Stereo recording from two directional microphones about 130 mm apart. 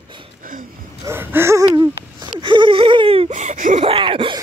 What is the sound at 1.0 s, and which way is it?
Gasp, 15° right (ahead or behind).